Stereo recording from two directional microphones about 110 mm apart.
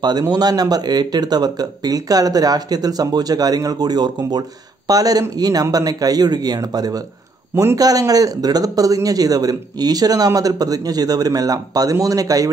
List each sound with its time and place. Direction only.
0.2 s speech: 35° right (ahead or behind)